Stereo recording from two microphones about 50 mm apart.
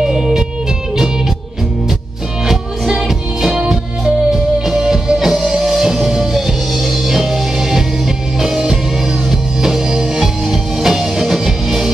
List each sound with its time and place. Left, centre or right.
0.0 s music: centre
2.4 s music: centre